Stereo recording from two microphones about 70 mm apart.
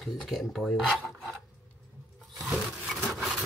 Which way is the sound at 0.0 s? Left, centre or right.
Centre.